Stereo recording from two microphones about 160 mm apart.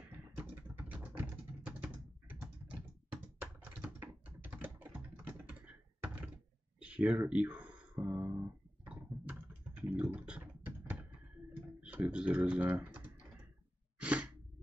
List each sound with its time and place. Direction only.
0.4 s typing: 10° right (ahead or behind)
6.8 s speech: 5° right (ahead or behind)
9.5 s computer keyboard: 10° right (ahead or behind)
11.4 s a sound: 35° right (ahead or behind)
11.8 s typing: 10° right (ahead or behind)
13.9 s sneeze: 10° right (ahead or behind)